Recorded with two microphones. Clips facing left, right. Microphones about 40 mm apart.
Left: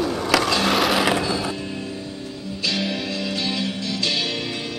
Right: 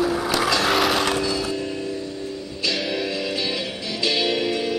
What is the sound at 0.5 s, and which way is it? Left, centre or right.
Vehicle, centre.